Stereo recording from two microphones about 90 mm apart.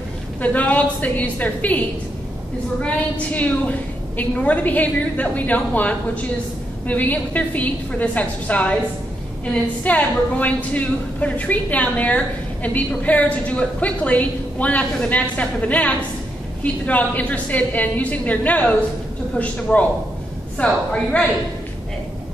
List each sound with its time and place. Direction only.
0.4 s a woman's voice: 15° left (ahead or behind)
3.3 s a woman's voice: 15° left (ahead or behind)